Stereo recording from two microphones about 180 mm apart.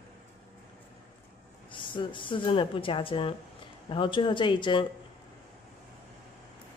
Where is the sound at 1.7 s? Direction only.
25° left (ahead or behind).